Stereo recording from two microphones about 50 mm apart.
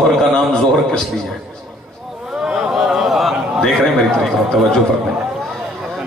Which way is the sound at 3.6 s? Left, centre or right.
Centre.